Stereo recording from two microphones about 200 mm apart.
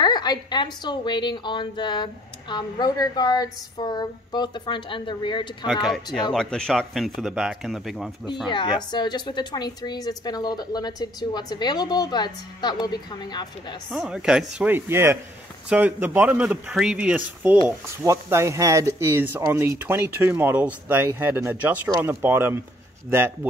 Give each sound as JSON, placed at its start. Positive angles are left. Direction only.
{"t": 0.0, "sound": "a woman's voice", "side_deg": 20}
{"t": 5.7, "sound": "speech", "side_deg": 0}
{"t": 8.5, "sound": "a woman's voice", "side_deg": 25}
{"t": 13.8, "sound": "speech", "side_deg": 0}